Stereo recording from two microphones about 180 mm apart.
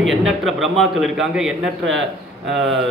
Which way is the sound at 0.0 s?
Centre (ahead or behind).